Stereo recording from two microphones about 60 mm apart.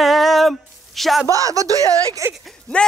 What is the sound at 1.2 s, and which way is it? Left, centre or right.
Speech, right.